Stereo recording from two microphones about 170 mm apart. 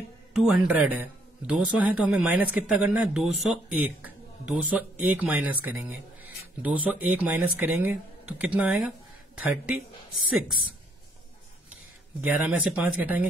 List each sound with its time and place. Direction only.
0.3 s a man's voice: 5° right (ahead or behind)
12.2 s a man's voice: 5° right (ahead or behind)